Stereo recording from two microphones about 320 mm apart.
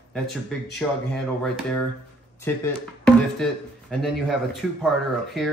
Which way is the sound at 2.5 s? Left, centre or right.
Centre.